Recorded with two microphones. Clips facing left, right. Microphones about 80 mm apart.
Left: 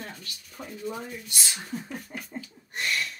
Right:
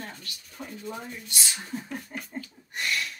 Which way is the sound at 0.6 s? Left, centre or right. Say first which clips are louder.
Left 2 dB; centre.